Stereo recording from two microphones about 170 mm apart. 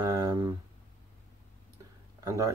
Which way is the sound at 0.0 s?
20° right (ahead or behind).